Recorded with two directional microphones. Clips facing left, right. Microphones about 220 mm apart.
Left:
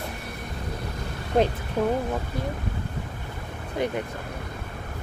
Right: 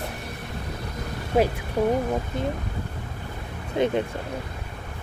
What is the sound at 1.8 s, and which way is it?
Speech, 15° right (ahead or behind).